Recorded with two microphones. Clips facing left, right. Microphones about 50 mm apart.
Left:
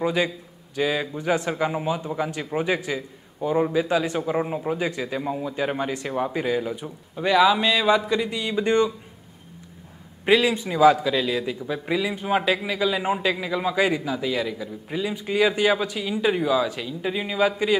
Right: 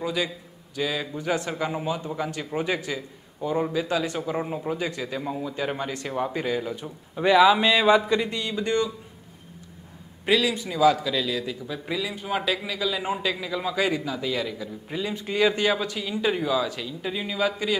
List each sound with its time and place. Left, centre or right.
0.0 s a man's voice: left
7.2 s speech: centre
8.3 s speech: centre
10.2 s a man's voice: left